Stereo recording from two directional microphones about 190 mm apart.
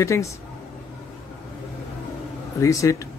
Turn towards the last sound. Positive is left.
turn(degrees=15)  # may be behind; listen again after turning